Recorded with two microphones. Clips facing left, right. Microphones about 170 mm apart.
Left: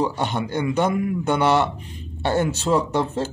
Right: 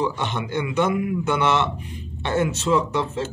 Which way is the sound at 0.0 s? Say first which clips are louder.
Left 2 dB; 35° left (ahead or behind).